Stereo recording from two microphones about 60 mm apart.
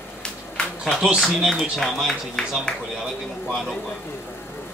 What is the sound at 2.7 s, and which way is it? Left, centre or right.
Speech, centre.